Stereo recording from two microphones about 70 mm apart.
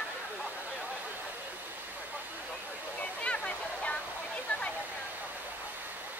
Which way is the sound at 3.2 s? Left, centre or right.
Centre.